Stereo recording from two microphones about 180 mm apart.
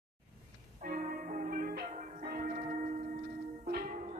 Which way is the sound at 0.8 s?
55° right (ahead or behind).